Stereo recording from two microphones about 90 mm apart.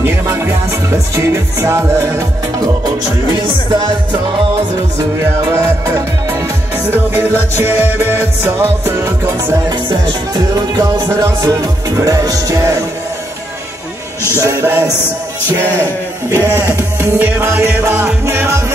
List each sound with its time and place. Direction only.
0.3 s music: 30° right (ahead or behind)
3.3 s music: 55° right (ahead or behind)
5.6 s music: 40° right (ahead or behind)
7.5 s music: 25° right (ahead or behind)
9.7 s music: 50° right (ahead or behind)
11.1 s music: 40° right (ahead or behind)
14.4 s music: 35° right (ahead or behind)
16.3 s music: 35° right (ahead or behind)